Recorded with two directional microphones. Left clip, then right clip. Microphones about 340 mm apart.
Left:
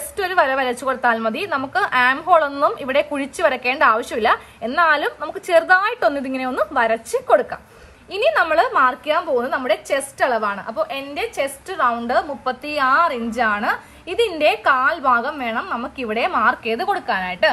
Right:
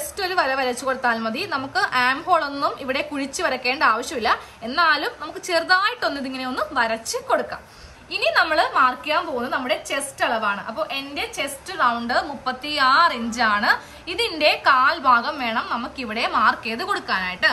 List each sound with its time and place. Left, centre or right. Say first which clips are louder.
0.2 s a woman's voice: left 4 dB; centre